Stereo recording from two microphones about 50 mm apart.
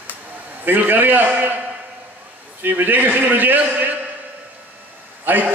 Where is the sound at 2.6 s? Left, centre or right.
Right.